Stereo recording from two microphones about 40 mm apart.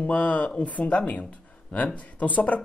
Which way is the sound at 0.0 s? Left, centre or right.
Left.